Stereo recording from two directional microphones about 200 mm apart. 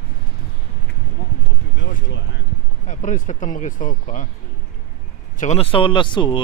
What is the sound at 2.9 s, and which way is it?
Speech, 40° left (ahead or behind).